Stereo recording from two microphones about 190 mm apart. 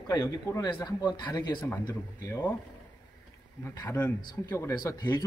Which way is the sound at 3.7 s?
10° left (ahead or behind).